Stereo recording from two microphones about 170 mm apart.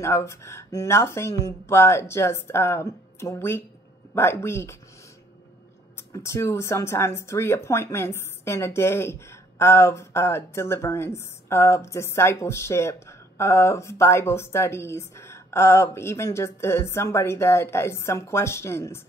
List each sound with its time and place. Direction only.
0.0 s speech: 15° left (ahead or behind)
5.9 s speech: 15° left (ahead or behind)